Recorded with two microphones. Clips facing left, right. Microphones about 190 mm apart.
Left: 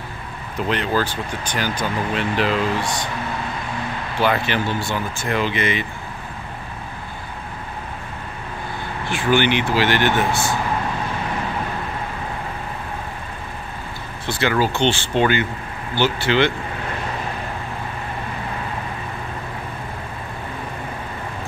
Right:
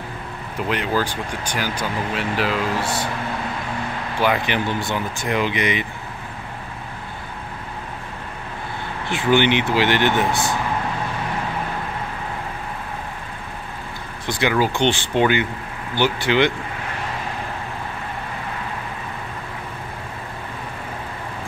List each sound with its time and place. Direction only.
0.6 s speech: 10° right (ahead or behind)
4.2 s speech: 15° right (ahead or behind)
9.1 s speech: 20° right (ahead or behind)
14.4 s speech: 15° right (ahead or behind)